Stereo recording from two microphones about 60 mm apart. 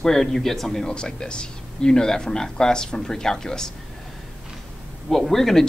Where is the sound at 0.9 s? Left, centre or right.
Centre.